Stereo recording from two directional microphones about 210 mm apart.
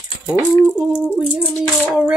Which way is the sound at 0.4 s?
5° right (ahead or behind).